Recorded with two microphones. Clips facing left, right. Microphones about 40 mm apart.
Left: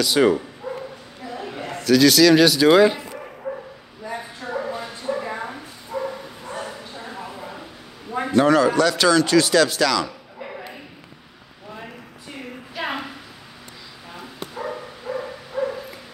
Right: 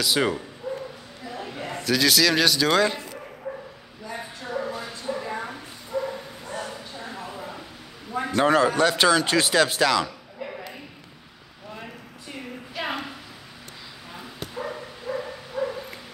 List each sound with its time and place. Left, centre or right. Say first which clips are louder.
0.0 s speech: left 6 dB; centre
0.7 s bow-wow: even; left
1.2 s a sound: left 3 dB; centre
1.8 s speech: left 7 dB; centre
2.7 s a man's voice: left 7 dB; centre
3.4 s bow-wow: left 4 dB; left
4.5 s bow-wow: left 2 dB; centre
8.5 s speech: left 1 dB; right
11.7 s a sound: left 2 dB; centre
14.5 s dog: left 3 dB; centre